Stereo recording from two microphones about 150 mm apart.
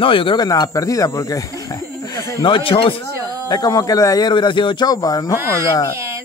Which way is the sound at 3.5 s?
25° left (ahead or behind).